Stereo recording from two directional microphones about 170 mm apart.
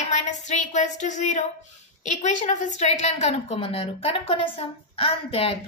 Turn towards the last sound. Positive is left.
turn(degrees=35)  # may be behind; listen again after turning